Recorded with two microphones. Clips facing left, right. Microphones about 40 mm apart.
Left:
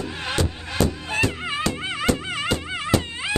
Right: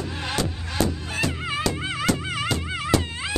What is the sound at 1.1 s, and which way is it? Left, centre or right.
Music, centre.